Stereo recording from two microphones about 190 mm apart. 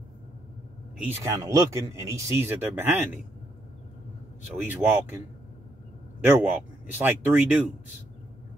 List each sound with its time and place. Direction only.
0.9 s speech: 15° right (ahead or behind)
4.6 s speech: 10° right (ahead or behind)
6.2 s speech: 10° right (ahead or behind)